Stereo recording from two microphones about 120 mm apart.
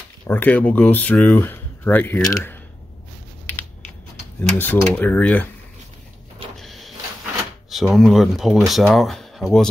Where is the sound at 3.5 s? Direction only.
20° left (ahead or behind).